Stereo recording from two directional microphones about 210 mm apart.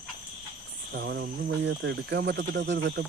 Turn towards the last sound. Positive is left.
turn(degrees=-55)  # may be behind; listen again after turning